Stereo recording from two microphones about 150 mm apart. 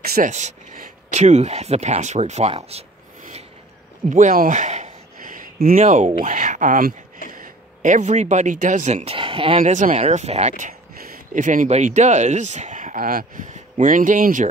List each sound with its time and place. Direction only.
0.0 s a sound: 90° right
0.3 s speech: 50° right (ahead or behind)
4.1 s speech: 60° right (ahead or behind)
4.5 s a sound: 50° right (ahead or behind); by 5.8 s 70° right (ahead or behind)
5.8 s speech: 55° right (ahead or behind)
6.0 s speech: 35° right (ahead or behind)
6.3 s speech: 55° right (ahead or behind); by 9.6 s 35° right (ahead or behind)
9.6 s speech: 55° right (ahead or behind)
10.6 s speech: 70° right (ahead or behind)
13.5 s speech: 60° right (ahead or behind)